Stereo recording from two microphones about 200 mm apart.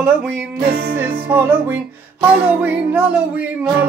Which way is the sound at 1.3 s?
10° right (ahead or behind).